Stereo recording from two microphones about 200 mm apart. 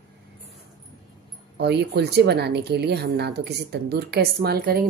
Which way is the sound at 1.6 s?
55° right (ahead or behind).